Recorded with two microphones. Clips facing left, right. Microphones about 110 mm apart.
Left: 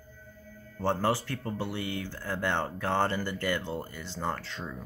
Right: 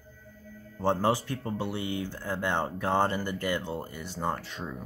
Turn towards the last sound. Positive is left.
turn(degrees=-15)  # may be behind; listen again after turning